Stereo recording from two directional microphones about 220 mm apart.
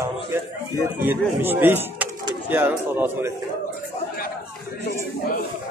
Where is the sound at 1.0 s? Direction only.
10° right (ahead or behind).